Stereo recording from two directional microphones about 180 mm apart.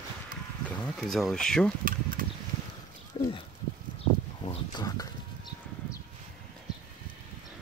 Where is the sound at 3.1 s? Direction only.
25° left (ahead or behind).